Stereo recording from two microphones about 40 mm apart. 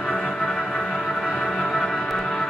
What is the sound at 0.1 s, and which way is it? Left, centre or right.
Music, centre.